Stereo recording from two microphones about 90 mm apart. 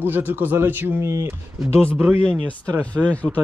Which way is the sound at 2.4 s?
15° left (ahead or behind).